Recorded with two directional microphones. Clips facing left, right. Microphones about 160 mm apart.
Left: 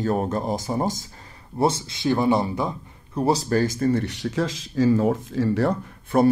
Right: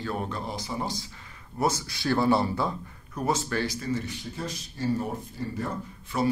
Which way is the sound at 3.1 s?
35° left (ahead or behind).